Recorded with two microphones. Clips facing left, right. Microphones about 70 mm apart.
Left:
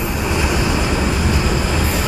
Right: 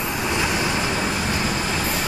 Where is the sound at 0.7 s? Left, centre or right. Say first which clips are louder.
Left 4 dB; left.